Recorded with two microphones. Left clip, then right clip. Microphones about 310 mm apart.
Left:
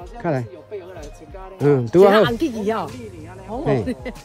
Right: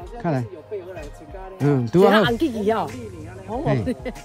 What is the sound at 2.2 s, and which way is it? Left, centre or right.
Speech, right.